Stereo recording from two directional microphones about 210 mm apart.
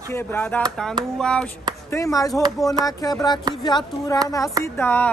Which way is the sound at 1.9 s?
15° left (ahead or behind).